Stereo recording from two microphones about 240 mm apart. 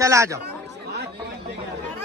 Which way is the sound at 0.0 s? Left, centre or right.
Centre.